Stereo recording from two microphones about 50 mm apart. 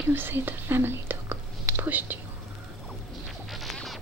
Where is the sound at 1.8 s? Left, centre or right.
Right.